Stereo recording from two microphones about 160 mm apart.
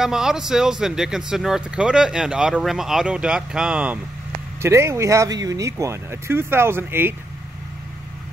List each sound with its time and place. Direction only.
0.0 s speech: 5° right (ahead or behind)